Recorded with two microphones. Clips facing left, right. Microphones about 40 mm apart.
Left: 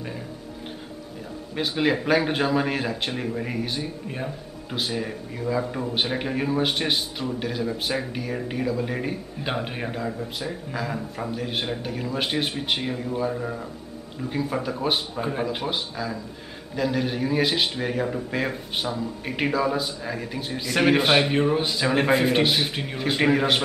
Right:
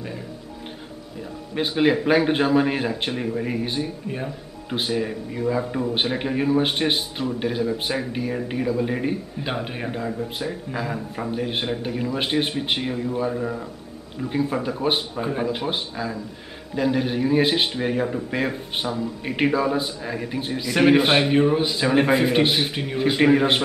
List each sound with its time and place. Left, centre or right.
1.5 s speech: centre
16.0 s speech: right
17.7 s speech: centre